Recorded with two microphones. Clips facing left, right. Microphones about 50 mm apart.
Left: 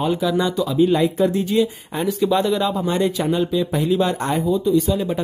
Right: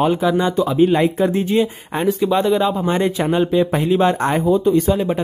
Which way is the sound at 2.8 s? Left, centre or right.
Right.